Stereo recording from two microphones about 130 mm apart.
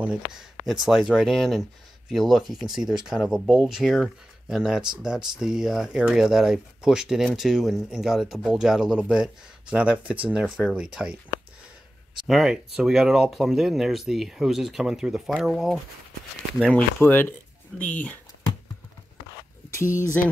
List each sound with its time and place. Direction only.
0.7 s speech: centre (ahead or behind)
12.2 s speech: 5° right (ahead or behind)
17.0 s speech: 15° left (ahead or behind)
19.8 s speech: 85° left